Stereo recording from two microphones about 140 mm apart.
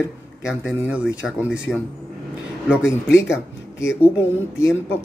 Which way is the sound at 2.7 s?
5° right (ahead or behind).